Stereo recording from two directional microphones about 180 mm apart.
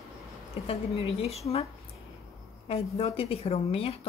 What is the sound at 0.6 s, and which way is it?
Speech, 35° left (ahead or behind).